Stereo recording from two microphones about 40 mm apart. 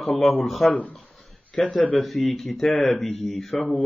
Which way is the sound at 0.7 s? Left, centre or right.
Left.